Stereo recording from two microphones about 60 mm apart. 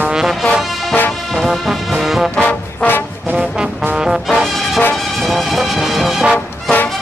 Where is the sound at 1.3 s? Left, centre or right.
Centre.